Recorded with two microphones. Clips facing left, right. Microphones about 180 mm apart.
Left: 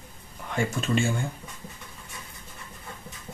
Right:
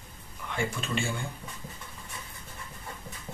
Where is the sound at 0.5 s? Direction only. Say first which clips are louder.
Left 5 dB; 45° left (ahead or behind).